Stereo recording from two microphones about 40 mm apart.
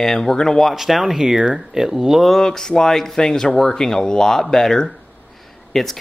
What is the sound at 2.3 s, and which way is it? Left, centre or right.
Speech, centre.